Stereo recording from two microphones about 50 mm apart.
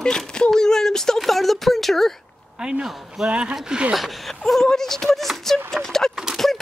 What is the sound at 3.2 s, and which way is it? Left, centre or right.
Speech, right.